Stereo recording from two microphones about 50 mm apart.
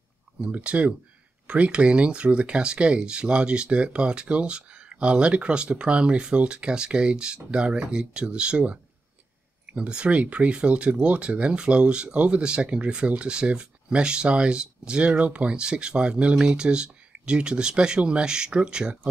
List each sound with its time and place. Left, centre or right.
0.4 s speech: right
9.8 s speech: right